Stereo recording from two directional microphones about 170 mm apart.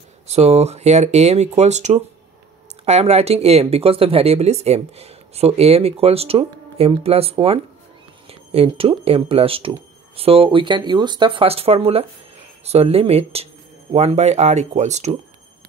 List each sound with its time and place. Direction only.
0.3 s speech: 40° right (ahead or behind)